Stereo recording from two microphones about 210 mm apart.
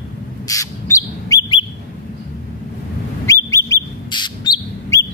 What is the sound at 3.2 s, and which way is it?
Bird, 15° left (ahead or behind).